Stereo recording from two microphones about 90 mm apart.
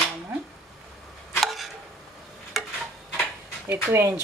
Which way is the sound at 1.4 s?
Centre (ahead or behind).